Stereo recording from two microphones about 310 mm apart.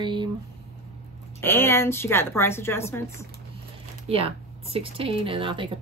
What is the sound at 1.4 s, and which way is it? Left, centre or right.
Speech, centre.